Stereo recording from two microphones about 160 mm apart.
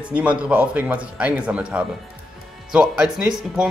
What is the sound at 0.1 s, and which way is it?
Speech, 10° right (ahead or behind).